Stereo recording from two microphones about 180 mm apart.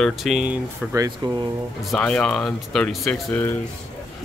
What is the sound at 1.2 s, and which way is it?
Speech, 25° right (ahead or behind).